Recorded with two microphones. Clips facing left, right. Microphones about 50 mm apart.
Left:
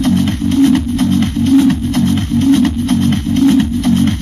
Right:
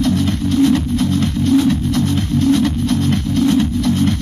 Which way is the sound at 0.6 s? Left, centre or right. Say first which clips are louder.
Left 3 dB; left.